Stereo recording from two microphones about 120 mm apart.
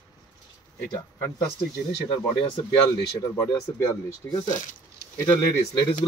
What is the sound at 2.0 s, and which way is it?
Speech, 35° left (ahead or behind).